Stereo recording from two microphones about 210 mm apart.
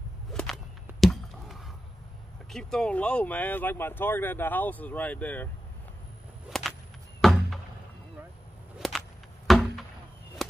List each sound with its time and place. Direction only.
0.3 s whip: centre (ahead or behind)
2.5 s speech: 5° left (ahead or behind)
6.5 s whip: centre (ahead or behind)
7.2 s a sound: centre (ahead or behind)
8.7 s whip: centre (ahead or behind)
9.5 s a sound: centre (ahead or behind)